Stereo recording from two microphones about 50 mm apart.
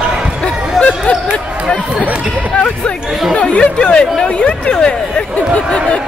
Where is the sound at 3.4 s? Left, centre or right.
Left.